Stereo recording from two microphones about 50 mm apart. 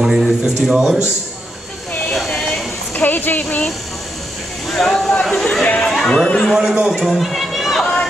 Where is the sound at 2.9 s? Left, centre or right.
Left.